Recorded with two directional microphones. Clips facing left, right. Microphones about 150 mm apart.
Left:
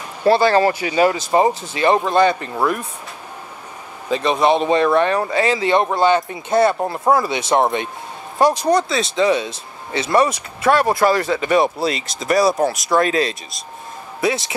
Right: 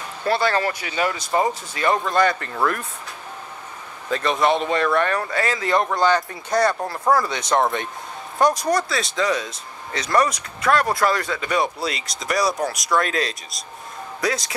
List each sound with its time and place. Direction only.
0.3 s speech: 30° left (ahead or behind)
4.1 s speech: 15° left (ahead or behind)